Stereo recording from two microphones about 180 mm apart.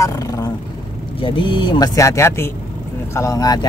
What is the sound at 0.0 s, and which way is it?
Vehicle, 20° left (ahead or behind).